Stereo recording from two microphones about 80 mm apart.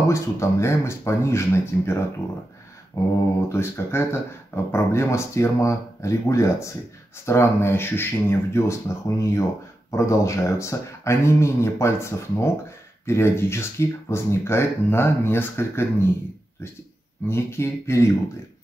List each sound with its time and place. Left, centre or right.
0.1 s speech: left
17.3 s speech: left